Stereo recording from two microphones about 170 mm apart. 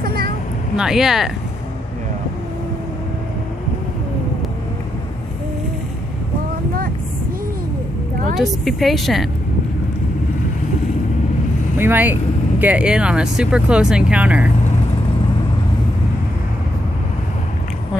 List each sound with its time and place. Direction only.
0.0 s vehicle: 60° right (ahead or behind)
0.7 s a woman's voice: 5° right (ahead or behind)
8.4 s a woman's voice: centre (ahead or behind)
11.8 s speech: 10° right (ahead or behind)